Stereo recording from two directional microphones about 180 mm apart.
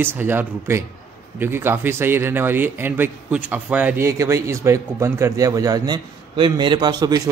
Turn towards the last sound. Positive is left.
turn(degrees=-20)  # may be behind; listen again after turning